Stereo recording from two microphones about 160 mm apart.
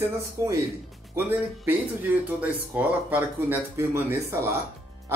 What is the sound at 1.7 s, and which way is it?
Speech, 10° right (ahead or behind).